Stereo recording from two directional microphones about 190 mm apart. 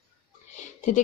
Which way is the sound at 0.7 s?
40° left (ahead or behind).